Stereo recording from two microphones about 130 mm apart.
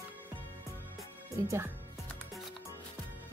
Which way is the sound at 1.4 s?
20° right (ahead or behind).